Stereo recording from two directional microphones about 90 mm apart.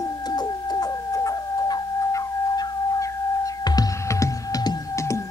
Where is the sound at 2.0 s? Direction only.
35° left (ahead or behind).